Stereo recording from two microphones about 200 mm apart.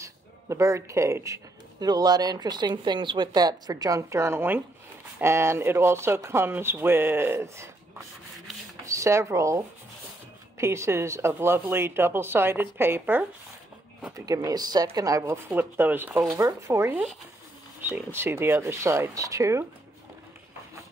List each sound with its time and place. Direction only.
0.0 s speech: 15° right (ahead or behind)
8.8 s speech: 15° right (ahead or behind)